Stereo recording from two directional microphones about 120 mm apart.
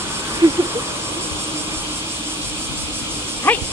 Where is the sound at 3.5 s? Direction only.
15° left (ahead or behind).